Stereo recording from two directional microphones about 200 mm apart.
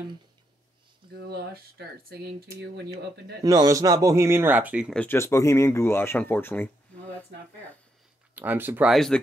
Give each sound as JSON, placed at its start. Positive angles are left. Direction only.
{"t": 1.3, "sound": "speech", "side_deg": -50}
{"t": 3.4, "sound": "speech", "side_deg": -15}
{"t": 4.9, "sound": "speech", "side_deg": 10}
{"t": 8.4, "sound": "speech", "side_deg": -10}